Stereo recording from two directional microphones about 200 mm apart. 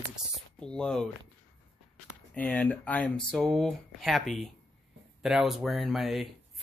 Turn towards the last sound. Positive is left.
turn(degrees=0)  # may be behind; listen again after turning